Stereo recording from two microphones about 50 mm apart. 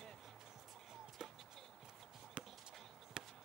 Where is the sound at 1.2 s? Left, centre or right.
Centre.